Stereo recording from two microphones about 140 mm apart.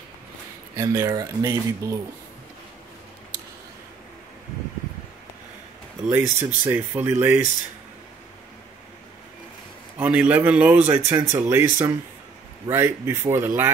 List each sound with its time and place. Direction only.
0.7 s speech: 20° right (ahead or behind)
6.0 s a man's voice: 15° right (ahead or behind)
9.9 s a man's voice: 10° right (ahead or behind)